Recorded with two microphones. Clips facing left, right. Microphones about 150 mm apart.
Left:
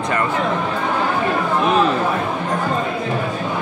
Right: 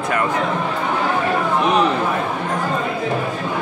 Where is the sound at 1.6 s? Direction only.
20° right (ahead or behind).